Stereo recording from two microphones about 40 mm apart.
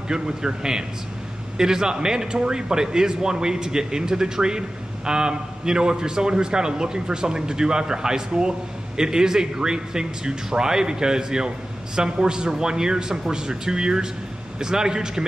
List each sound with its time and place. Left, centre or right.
0.1 s speech: centre